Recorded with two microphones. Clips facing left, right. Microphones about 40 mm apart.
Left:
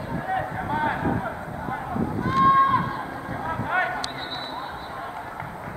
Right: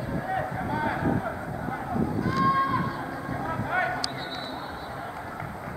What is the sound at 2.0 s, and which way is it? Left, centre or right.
Run, left.